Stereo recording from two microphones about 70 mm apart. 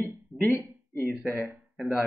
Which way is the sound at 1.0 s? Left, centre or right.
Centre.